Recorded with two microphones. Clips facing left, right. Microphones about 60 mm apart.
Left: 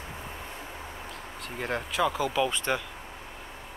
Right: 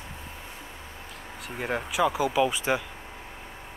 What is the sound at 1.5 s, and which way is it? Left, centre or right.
Speech, centre.